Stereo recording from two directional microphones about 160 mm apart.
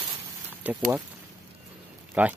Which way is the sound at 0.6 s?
10° right (ahead or behind).